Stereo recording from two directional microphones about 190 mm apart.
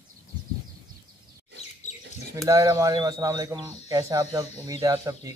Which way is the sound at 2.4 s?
20° right (ahead or behind).